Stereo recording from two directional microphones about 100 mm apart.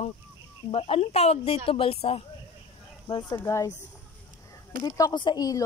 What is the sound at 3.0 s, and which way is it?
Speech, 50° left (ahead or behind).